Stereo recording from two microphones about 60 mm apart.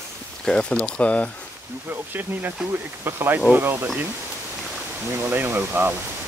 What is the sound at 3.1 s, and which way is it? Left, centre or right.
Speech, right.